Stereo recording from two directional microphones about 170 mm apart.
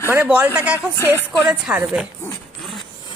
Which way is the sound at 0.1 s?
10° right (ahead or behind).